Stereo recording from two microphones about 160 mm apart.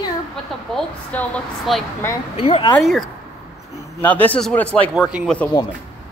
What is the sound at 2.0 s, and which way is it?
Speech, 15° left (ahead or behind).